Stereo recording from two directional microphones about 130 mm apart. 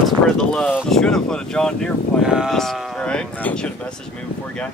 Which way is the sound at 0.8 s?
5° left (ahead or behind).